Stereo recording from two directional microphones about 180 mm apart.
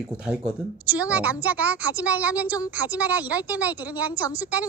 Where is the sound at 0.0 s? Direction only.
5° right (ahead or behind).